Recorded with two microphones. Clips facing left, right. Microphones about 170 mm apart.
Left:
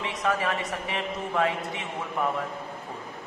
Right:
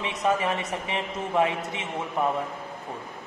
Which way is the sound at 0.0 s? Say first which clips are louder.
Right 2 dB; 20° right (ahead or behind).